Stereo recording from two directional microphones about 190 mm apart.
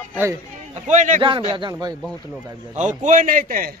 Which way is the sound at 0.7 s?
40° right (ahead or behind).